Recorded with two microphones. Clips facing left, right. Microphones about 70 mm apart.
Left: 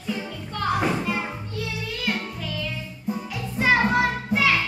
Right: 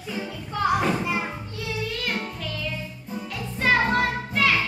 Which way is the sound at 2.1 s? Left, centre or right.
Centre.